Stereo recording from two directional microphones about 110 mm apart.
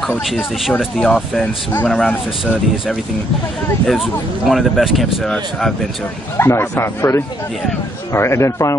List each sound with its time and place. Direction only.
0.7 s speech: 5° left (ahead or behind)
3.8 s speech: centre (ahead or behind)
6.3 s speech: 25° left (ahead or behind)